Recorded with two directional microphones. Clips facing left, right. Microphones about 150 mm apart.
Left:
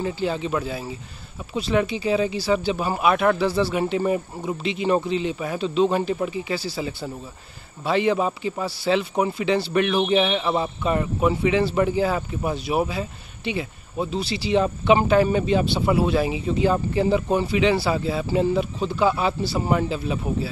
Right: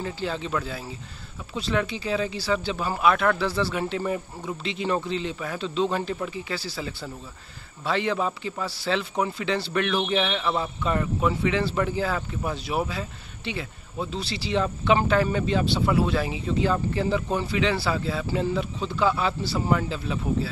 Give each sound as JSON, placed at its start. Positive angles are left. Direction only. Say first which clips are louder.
{"t": 0.0, "sound": "a man's voice", "louder": "left 5 dB", "side_deg": 15}